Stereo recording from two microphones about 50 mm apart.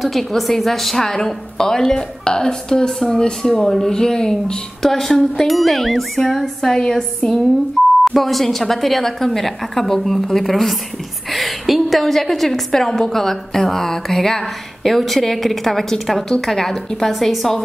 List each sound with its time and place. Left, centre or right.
0.0 s a woman's voice: centre